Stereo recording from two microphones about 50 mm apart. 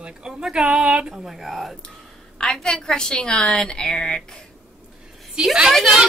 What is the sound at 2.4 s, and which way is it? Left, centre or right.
A woman's voice, centre.